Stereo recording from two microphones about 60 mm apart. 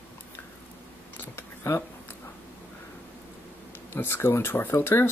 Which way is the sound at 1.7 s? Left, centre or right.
Left.